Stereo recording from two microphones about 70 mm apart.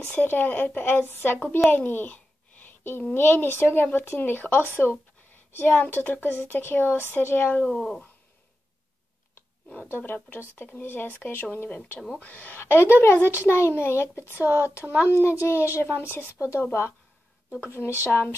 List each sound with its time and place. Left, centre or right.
0.1 s speech: left
2.6 s a sound: left
3.2 s a woman's voice: left
7.6 s speech: centre
9.8 s a woman's voice: left
12.5 s a woman's voice: left
17.6 s a woman's voice: left